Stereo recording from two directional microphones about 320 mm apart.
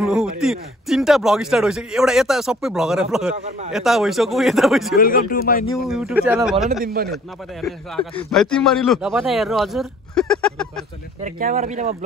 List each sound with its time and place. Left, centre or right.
0.0 s speech: centre
4.9 s speech: left
5.9 s speech: centre
6.8 s speech: right
8.2 s speech: centre
11.2 s speech: right